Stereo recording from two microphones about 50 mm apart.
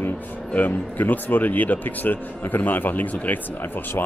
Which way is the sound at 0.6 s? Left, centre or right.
Left.